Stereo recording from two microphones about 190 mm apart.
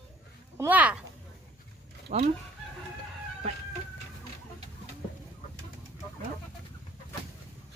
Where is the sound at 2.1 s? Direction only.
40° right (ahead or behind).